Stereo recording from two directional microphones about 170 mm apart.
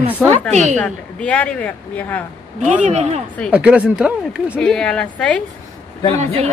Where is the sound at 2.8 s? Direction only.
40° right (ahead or behind).